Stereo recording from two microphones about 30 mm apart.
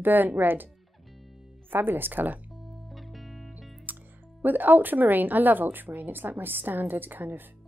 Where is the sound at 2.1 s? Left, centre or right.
Right.